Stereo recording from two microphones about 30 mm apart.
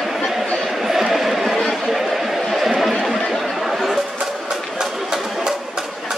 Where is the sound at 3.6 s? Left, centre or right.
Centre.